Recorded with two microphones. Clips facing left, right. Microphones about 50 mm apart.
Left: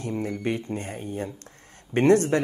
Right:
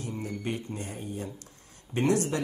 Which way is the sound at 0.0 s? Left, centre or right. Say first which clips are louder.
Left 6 dB; left.